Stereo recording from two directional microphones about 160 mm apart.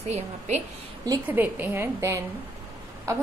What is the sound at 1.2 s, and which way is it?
A woman's voice, 10° right (ahead or behind).